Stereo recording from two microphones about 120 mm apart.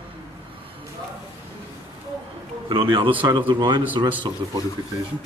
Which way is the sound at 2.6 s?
45° right (ahead or behind).